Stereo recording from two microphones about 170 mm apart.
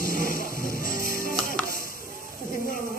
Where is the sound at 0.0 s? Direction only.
50° left (ahead or behind).